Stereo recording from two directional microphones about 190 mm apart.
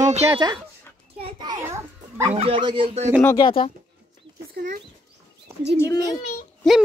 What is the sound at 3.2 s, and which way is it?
Speech, 15° left (ahead or behind).